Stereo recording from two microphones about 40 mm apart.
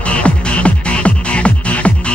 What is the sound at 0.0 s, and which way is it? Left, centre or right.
Music, left.